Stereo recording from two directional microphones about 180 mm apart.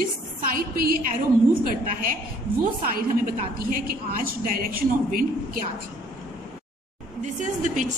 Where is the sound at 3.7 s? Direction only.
50° right (ahead or behind).